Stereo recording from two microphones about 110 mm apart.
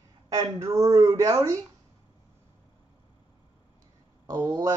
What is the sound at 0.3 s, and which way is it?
Speech, 30° right (ahead or behind).